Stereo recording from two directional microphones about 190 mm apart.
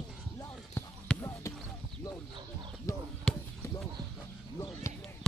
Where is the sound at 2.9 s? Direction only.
15° left (ahead or behind).